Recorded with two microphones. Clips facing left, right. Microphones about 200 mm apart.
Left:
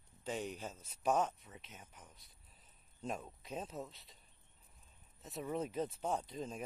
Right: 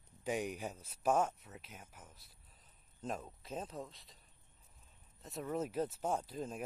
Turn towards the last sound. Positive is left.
turn(degrees=-5)  # may be behind; listen again after turning